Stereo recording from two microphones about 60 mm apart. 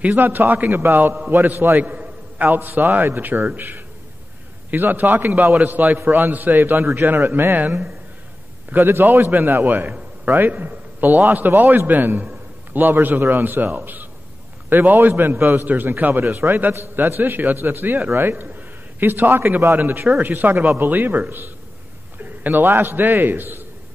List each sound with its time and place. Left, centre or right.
0.0 s a man's voice: right